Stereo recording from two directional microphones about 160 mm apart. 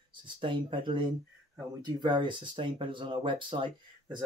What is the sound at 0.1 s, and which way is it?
Speech, 30° right (ahead or behind).